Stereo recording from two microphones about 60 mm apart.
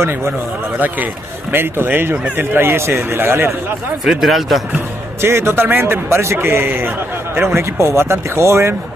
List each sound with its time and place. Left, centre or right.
1.5 s a man's voice: right
4.0 s speech: centre
5.2 s a man's voice: right
7.4 s speech: right